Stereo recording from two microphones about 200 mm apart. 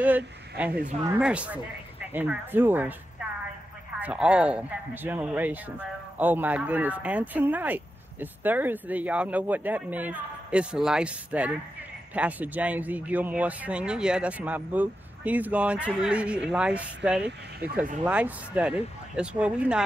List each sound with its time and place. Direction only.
0.0 s speech: 10° right (ahead or behind)
4.0 s speech: 5° right (ahead or behind)
17.2 s speech: 50° right (ahead or behind)
18.0 s speech: 5° right (ahead or behind)